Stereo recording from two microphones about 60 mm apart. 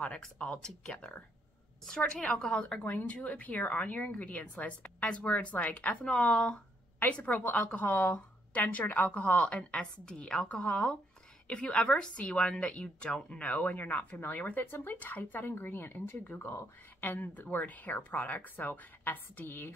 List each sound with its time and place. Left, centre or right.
0.2 s speech: centre
0.9 s a woman's voice: left
1.9 s speech: centre
2.8 s a woman's voice: left
6.0 s a woman's voice: centre; by 19.7 s left